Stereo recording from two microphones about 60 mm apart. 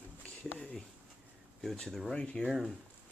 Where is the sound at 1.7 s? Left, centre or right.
Centre.